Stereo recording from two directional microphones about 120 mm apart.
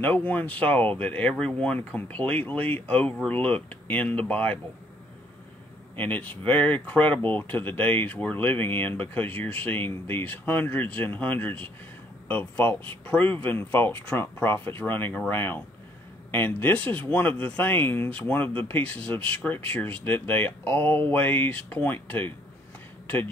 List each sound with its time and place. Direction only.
0.0 s speech: 15° left (ahead or behind)
5.9 s speech: 15° left (ahead or behind)